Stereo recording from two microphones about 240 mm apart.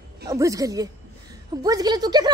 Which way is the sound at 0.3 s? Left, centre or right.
Centre.